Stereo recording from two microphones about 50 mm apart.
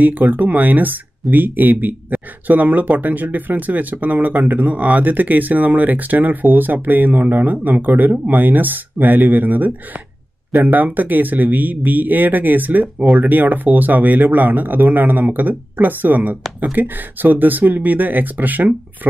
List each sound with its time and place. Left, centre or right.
0.0 s speech: right